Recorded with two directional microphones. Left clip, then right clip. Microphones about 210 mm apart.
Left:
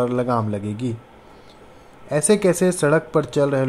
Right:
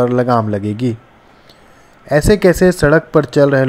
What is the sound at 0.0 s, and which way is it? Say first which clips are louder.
Speech: right 8 dB; 20° right (ahead or behind).